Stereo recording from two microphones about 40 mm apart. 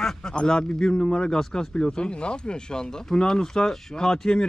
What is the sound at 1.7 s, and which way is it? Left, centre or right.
Speech, left.